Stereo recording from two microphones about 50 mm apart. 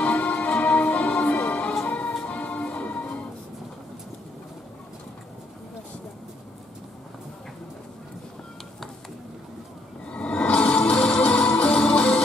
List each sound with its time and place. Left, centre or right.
0.0 s music: left
10.0 s music: left